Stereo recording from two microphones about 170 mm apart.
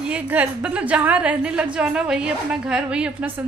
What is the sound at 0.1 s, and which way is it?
A woman's voice, 10° right (ahead or behind).